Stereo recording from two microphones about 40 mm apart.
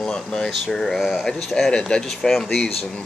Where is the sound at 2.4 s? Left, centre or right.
Centre.